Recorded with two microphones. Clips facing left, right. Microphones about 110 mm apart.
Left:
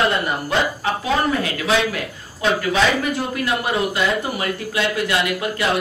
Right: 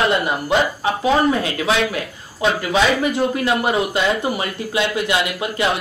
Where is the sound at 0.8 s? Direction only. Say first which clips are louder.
Right 4 dB; 20° right (ahead or behind).